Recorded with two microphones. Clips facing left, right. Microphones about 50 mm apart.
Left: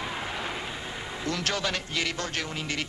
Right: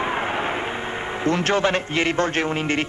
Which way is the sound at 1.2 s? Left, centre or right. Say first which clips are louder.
Right 10 dB; right.